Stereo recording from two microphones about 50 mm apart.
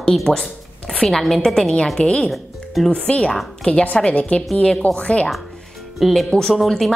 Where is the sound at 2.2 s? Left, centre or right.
Centre.